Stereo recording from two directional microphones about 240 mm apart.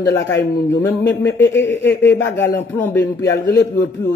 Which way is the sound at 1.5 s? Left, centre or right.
Left.